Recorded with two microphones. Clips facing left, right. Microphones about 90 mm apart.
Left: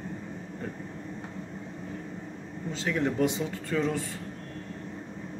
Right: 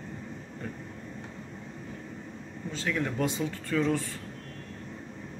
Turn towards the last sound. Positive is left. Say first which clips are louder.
# right 1 dB
turn(degrees=20)  # may be behind; listen again after turning